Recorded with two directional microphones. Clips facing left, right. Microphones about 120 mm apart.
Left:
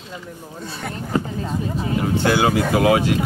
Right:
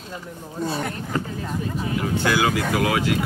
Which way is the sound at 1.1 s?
20° left (ahead or behind).